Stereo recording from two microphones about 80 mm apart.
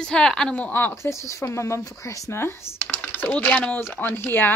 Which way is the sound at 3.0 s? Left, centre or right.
Left.